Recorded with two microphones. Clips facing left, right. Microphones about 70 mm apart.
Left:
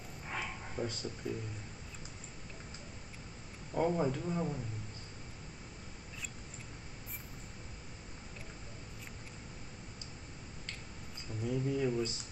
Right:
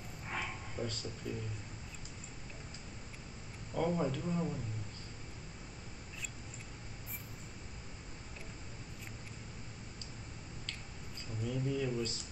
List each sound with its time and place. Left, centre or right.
0.3 s a sound: centre
0.8 s speech: left
1.2 s speech: centre
3.7 s speech: centre
11.4 s speech: centre